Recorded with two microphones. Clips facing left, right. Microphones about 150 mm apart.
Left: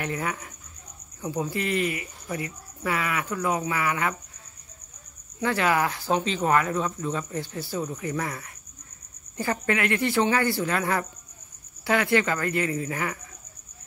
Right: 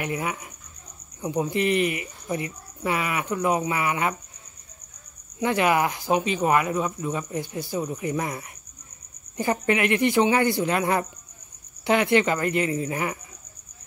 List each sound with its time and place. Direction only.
0.0 s speech: 15° right (ahead or behind)
5.4 s speech: 15° right (ahead or behind)